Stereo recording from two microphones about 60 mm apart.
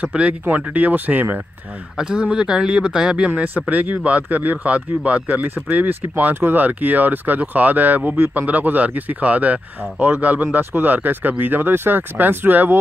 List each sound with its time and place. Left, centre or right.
0.0 s speech: centre
2.0 s speech: centre
3.3 s speech: right